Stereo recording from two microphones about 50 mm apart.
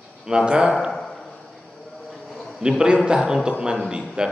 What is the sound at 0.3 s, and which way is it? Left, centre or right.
Speech, centre.